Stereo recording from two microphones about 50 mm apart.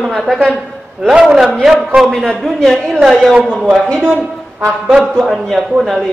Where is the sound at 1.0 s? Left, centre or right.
Centre.